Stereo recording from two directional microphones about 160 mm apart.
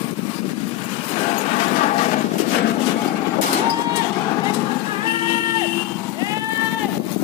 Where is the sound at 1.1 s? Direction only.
40° left (ahead or behind).